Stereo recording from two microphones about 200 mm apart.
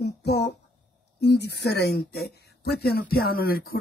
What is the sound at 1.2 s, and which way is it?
Speech, 55° left (ahead or behind).